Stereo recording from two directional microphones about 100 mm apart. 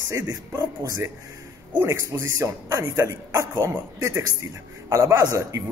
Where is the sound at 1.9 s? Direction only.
30° right (ahead or behind).